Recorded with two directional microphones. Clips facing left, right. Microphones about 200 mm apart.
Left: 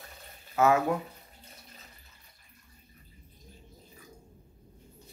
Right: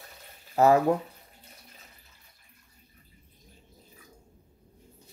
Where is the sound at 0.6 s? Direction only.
35° right (ahead or behind).